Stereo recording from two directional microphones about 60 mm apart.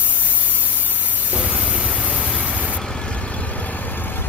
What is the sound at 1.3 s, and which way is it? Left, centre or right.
Vehicle, right.